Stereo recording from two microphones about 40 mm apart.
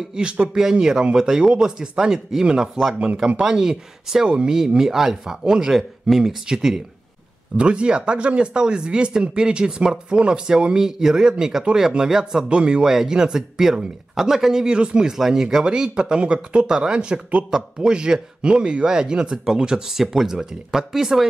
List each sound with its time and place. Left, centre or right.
0.1 s speech: right
5.7 s speech: centre
7.5 s speech: right
12.4 s speech: right
12.8 s speech: centre
19.9 s speech: centre